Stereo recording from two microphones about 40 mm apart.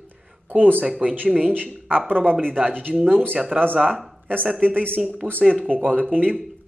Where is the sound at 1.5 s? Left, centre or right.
Right.